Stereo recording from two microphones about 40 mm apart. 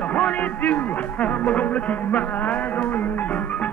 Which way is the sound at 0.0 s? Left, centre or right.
Left.